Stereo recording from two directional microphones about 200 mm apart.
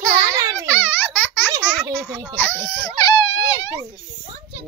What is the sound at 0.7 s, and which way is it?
Baby laughter, 10° left (ahead or behind).